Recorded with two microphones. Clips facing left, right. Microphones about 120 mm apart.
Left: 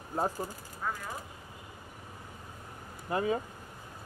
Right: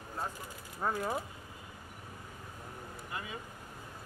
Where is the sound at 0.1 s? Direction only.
40° left (ahead or behind).